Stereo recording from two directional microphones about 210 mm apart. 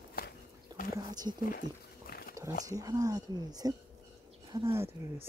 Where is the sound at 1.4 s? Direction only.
40° left (ahead or behind).